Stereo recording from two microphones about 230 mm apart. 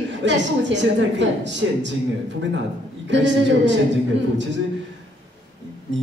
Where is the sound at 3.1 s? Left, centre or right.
Right.